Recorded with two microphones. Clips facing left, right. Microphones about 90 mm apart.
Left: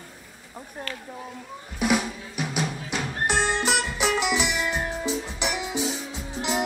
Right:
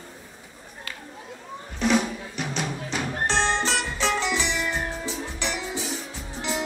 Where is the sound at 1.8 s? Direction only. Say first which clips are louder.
Right 1 dB; 10° left (ahead or behind).